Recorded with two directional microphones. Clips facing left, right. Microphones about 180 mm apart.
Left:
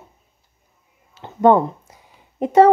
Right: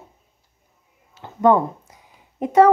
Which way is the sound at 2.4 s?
30° left (ahead or behind).